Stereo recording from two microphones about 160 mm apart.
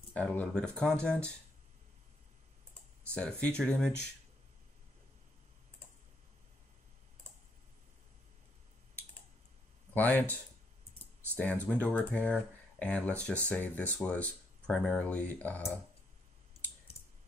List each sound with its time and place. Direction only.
0.1 s speech: 10° left (ahead or behind)
3.2 s speech: 5° left (ahead or behind)
9.9 s speech: 10° left (ahead or behind)
11.6 s speech: 10° left (ahead or behind)